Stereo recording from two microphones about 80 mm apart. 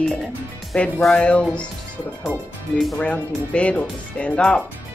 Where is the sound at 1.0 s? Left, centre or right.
Centre.